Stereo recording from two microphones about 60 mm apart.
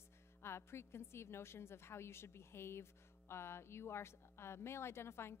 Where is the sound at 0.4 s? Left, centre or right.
Left.